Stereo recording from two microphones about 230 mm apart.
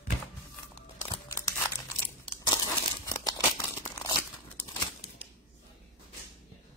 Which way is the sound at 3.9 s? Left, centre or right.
Centre.